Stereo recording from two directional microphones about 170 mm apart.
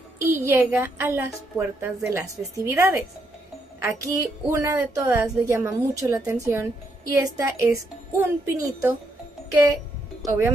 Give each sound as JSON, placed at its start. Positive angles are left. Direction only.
{"t": 0.2, "sound": "a woman's voice", "side_deg": -15}
{"t": 10.2, "sound": "speech", "side_deg": -15}